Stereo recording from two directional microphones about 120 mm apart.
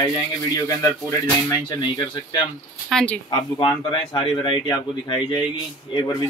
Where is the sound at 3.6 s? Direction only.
40° left (ahead or behind).